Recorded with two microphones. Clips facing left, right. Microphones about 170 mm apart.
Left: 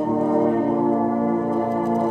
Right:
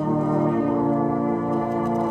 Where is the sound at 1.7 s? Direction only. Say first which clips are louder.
Left 2 dB; 30° left (ahead or behind).